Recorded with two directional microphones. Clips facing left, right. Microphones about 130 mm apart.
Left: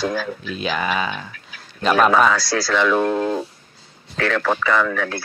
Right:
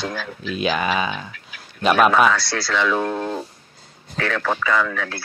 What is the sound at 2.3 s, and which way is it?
Speech, 40° left (ahead or behind).